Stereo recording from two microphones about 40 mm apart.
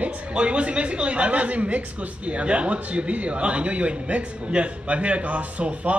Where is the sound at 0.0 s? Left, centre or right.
Right.